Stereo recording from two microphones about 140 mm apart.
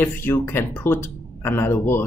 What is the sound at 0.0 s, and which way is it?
Speech, 15° left (ahead or behind).